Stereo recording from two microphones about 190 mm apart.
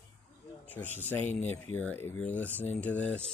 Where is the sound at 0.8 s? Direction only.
40° left (ahead or behind).